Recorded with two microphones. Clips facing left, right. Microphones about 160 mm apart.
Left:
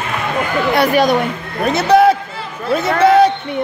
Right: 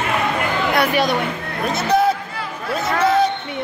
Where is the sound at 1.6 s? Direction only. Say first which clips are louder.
Left 7 dB; 65° left (ahead or behind).